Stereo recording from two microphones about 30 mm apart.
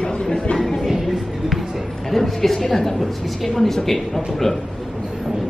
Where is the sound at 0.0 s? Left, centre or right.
Left.